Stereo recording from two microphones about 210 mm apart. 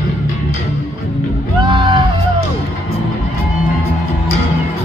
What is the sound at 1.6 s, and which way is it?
Music, 20° right (ahead or behind).